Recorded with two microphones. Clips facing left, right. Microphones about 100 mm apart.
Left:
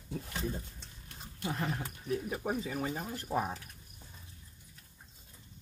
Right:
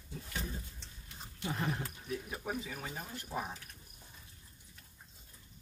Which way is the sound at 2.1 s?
35° left (ahead or behind).